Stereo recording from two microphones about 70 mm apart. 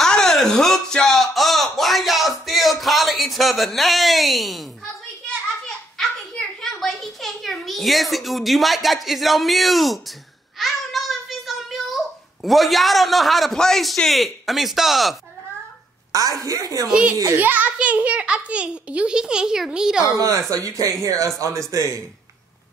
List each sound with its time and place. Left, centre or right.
0.0 s a sound: centre
5.9 s a sound: centre
12.4 s a man's voice: centre
16.1 s a woman's voice: right
17.4 s a child's voice: right
20.2 s speech: right